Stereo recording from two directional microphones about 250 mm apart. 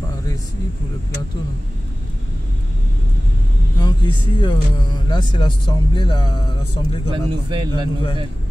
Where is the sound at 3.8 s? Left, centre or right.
Centre.